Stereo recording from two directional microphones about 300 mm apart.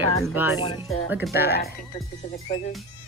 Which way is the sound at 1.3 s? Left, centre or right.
Left.